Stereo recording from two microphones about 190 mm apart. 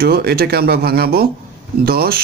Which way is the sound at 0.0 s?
55° right (ahead or behind).